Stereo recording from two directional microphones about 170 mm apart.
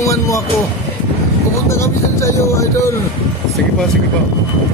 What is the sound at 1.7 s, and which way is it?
Speech, 15° left (ahead or behind).